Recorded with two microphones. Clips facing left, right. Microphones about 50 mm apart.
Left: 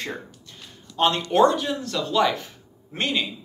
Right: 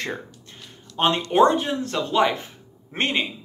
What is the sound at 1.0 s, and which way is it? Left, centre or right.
Speech, right.